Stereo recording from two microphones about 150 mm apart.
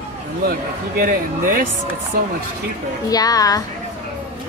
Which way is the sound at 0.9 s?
70° right (ahead or behind).